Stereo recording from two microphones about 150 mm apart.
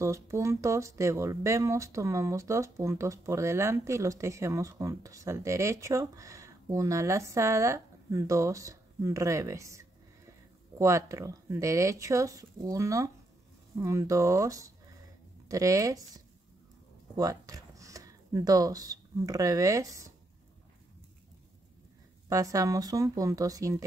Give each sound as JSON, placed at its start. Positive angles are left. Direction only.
{"t": 0.0, "sound": "speech", "side_deg": -20}
{"t": 17.2, "sound": "speech", "side_deg": -25}
{"t": 22.3, "sound": "speech", "side_deg": -20}